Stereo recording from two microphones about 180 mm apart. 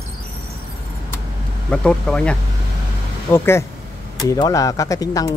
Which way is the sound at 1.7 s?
5° left (ahead or behind).